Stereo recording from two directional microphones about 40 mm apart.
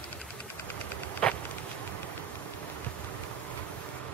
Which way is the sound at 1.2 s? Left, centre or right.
Left.